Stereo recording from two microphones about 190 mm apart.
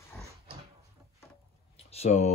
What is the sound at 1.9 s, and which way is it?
Speech, 35° left (ahead or behind).